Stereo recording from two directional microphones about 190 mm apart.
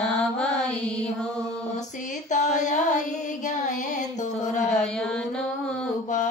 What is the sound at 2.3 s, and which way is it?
Carnatic music, 40° left (ahead or behind).